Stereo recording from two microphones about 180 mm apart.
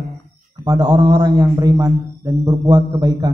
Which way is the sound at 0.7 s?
20° right (ahead or behind).